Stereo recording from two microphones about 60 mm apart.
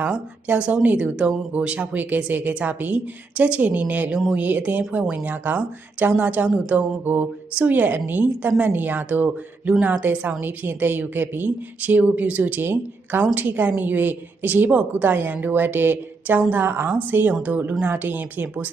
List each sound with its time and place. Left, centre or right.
0.0 s a woman's voice: right